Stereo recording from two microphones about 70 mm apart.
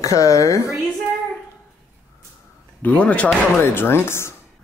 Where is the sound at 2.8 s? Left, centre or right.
Left.